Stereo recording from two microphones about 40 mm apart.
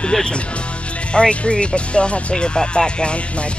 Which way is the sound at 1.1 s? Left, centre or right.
Left.